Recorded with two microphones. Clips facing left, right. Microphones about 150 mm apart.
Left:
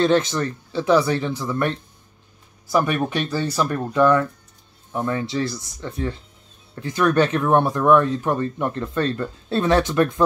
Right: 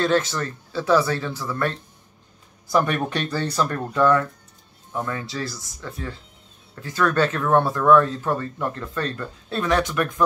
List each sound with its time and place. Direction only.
0.0 s speech: 20° left (ahead or behind)
2.7 s speech: 10° left (ahead or behind); by 10.2 s 25° left (ahead or behind)